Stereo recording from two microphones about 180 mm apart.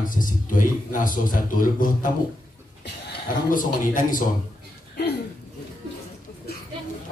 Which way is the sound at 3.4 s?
50° left (ahead or behind).